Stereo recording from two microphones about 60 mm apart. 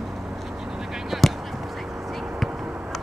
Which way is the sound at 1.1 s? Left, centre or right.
Centre.